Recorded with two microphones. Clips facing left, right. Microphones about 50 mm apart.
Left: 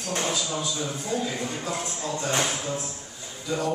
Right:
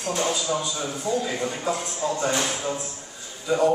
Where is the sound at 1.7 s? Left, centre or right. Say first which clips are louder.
Right 4 dB; centre.